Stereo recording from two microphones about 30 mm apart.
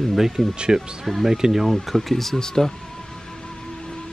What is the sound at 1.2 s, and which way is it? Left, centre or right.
Speech, centre.